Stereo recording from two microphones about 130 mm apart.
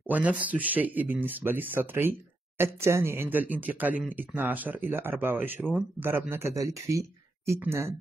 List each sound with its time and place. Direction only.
0.0 s speech: 10° right (ahead or behind)